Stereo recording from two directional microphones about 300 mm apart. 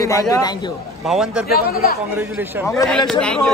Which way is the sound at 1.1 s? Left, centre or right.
Centre.